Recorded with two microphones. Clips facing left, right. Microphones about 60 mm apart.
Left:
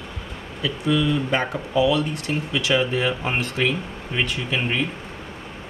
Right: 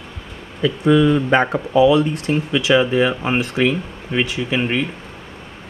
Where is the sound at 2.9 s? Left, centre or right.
Centre.